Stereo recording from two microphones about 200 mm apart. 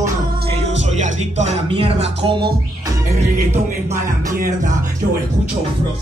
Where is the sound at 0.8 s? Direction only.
35° right (ahead or behind).